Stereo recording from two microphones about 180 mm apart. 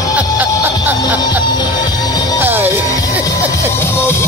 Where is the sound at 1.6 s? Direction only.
20° left (ahead or behind).